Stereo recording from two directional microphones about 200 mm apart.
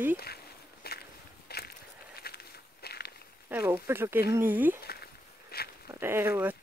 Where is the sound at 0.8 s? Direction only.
50° left (ahead or behind).